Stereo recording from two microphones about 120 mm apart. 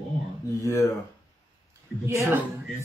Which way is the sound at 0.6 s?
25° left (ahead or behind).